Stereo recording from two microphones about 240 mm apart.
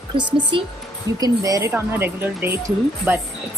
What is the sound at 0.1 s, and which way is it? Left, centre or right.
A woman's voice, right.